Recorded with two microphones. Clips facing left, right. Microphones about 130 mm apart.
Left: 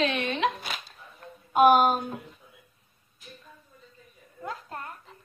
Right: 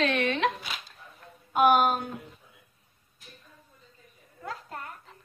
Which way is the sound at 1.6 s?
30° left (ahead or behind).